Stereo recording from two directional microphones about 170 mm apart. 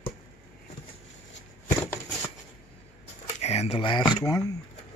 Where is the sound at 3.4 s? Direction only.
40° left (ahead or behind); by 4.5 s 20° left (ahead or behind).